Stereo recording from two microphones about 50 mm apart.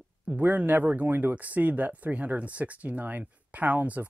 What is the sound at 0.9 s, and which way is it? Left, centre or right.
Speech, right.